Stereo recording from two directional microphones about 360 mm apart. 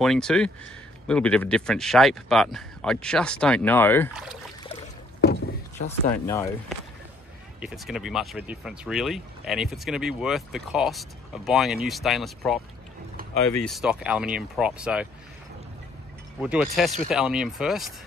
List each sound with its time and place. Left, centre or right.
0.0 s speech: centre
5.2 s rowboat: left
6.2 s speech: centre
7.6 s speech: centre
16.3 s speech: centre